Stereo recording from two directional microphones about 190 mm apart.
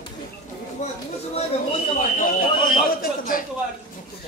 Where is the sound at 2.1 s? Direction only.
45° left (ahead or behind).